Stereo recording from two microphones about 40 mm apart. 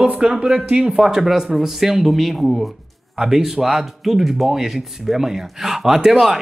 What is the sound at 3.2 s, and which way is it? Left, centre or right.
Speech, centre.